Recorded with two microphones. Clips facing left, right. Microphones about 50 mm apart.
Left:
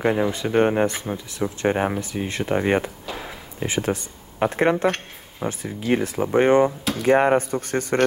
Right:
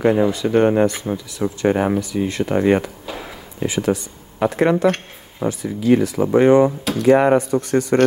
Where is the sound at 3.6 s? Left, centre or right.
Left.